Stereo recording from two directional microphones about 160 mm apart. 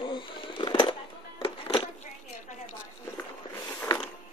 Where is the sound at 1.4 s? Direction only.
30° left (ahead or behind).